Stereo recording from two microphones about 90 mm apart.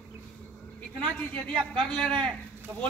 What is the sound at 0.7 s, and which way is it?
A woman's voice, 15° left (ahead or behind).